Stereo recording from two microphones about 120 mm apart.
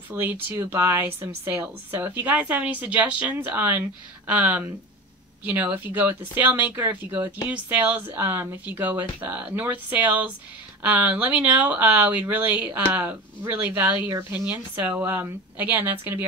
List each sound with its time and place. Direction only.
0.1 s speech: 15° right (ahead or behind)